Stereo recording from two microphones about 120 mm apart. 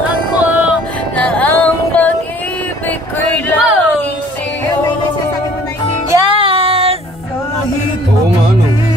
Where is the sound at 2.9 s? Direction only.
15° left (ahead or behind).